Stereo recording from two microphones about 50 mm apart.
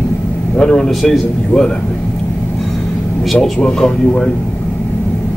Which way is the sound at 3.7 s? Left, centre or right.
Centre.